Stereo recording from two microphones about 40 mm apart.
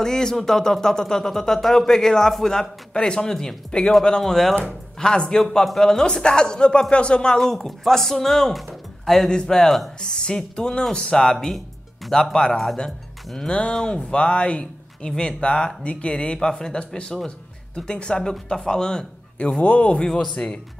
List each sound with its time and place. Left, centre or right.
0.0 s speech: centre
4.9 s a man's voice: left
7.4 s speech: centre
9.3 s speech: centre
11.3 s speech: centre
12.1 s speech: centre